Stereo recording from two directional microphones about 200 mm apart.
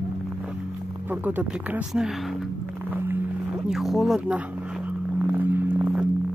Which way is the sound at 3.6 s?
Centre (ahead or behind).